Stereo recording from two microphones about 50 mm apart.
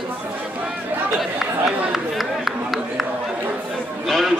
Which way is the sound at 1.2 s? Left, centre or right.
Centre.